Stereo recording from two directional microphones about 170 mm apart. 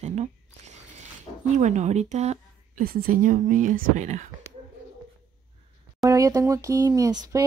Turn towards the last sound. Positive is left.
turn(degrees=-20)  # may be behind; listen again after turning